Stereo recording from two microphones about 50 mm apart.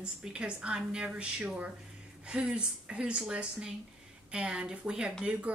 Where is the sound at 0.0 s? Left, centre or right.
Right.